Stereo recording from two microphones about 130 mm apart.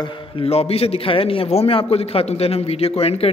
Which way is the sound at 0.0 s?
45° left (ahead or behind).